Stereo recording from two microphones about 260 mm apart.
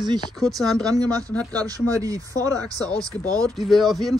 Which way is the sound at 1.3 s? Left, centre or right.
Centre.